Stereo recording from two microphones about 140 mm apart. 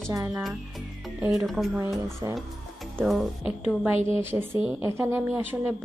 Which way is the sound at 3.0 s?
Centre (ahead or behind).